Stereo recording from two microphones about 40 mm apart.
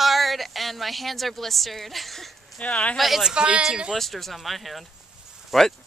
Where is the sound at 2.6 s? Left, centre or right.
Left.